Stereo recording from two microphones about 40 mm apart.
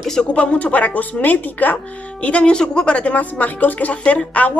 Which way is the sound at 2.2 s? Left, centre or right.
Left.